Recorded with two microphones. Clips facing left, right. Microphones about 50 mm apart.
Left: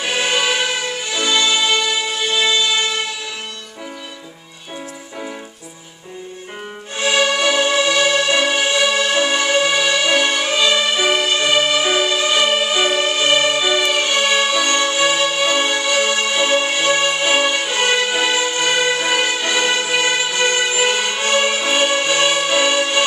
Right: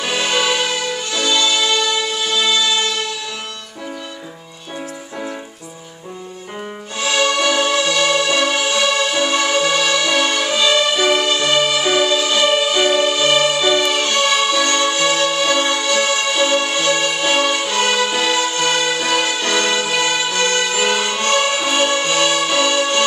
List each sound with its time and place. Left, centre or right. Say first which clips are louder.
0.0 s music: even; centre
7.0 s music: left 1 dB; centre